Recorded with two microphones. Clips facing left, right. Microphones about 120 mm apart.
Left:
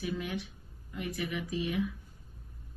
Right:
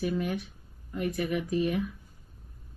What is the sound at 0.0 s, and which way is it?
Speech, 50° right (ahead or behind).